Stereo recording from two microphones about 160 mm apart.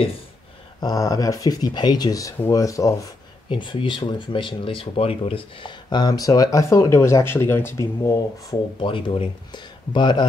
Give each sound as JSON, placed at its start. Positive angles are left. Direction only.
{"t": 0.7, "sound": "speech", "side_deg": 25}
{"t": 3.4, "sound": "speech", "side_deg": 30}